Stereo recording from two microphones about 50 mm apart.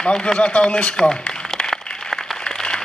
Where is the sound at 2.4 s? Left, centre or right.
Centre.